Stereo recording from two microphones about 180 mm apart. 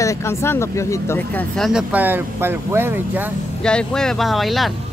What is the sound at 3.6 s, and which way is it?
Speech, 5° left (ahead or behind).